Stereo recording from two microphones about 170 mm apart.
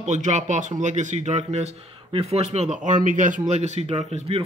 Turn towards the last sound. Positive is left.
turn(degrees=-35)  # may be behind; listen again after turning